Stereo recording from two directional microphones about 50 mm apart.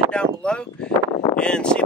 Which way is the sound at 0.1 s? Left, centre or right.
Centre.